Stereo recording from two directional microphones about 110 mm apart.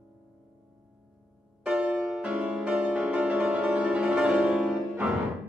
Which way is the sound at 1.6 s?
10° right (ahead or behind).